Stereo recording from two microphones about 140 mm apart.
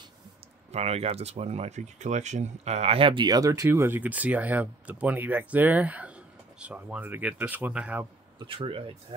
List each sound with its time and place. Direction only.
0.7 s speech: 50° right (ahead or behind); by 8.1 s 10° right (ahead or behind)
8.4 s speech: 40° right (ahead or behind)